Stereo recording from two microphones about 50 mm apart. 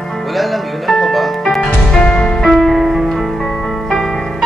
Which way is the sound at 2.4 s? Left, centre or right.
Centre.